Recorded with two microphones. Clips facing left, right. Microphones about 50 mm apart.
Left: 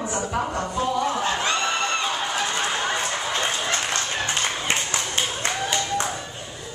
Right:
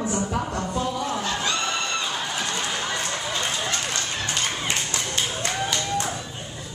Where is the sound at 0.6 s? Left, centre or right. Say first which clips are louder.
Left 3 dB; left.